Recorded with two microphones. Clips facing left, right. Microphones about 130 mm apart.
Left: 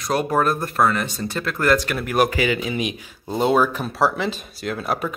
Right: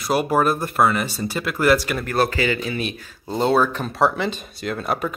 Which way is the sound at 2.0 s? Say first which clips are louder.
Left 1 dB; 10° left (ahead or behind).